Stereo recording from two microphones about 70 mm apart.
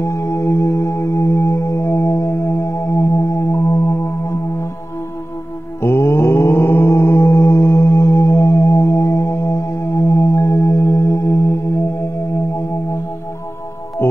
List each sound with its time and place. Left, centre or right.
0.0 s singing bowl: left
2.2 s music: left
5.8 s mantra: left
9.3 s music: left
10.0 s singing bowl: left
11.1 s singing bowl: left